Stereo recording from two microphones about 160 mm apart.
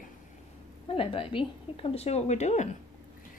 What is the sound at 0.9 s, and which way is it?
A woman's voice, 35° left (ahead or behind).